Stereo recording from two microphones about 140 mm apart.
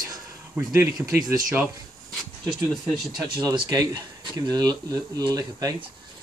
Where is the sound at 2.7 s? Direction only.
Centre (ahead or behind).